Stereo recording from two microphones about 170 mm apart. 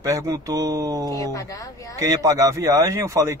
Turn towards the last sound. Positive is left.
turn(degrees=-15)  # may be behind; listen again after turning